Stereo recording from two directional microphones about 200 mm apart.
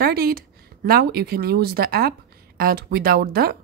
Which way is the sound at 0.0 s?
50° right (ahead or behind).